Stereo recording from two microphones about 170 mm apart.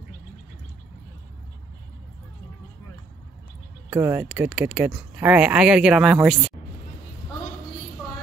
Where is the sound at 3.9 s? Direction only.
15° right (ahead or behind).